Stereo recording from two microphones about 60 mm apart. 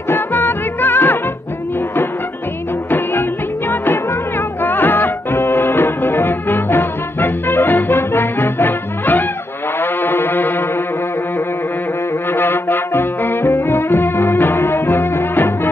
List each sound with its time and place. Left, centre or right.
0.1 s music: left
2.9 s music: left
12.3 s music: left